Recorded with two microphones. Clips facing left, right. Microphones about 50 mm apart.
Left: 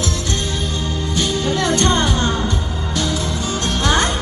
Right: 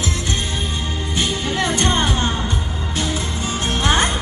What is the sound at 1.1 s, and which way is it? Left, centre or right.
Music, right.